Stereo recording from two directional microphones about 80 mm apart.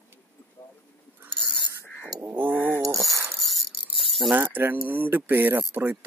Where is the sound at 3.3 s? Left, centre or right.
Centre.